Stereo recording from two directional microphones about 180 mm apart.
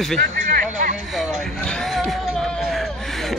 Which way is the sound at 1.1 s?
Centre (ahead or behind).